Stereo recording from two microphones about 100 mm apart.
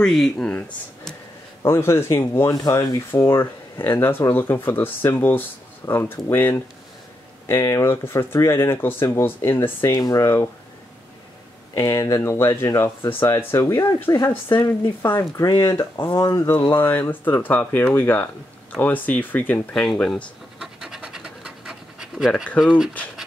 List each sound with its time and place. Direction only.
0.0 s speech: 5° left (ahead or behind)
1.6 s speech: 25° left (ahead or behind)
9.8 s speech: 40° left (ahead or behind)
11.7 s speech: 30° left (ahead or behind); by 20.2 s 5° left (ahead or behind)
20.6 s pant: 5° right (ahead or behind)
22.6 s speech: 5° right (ahead or behind)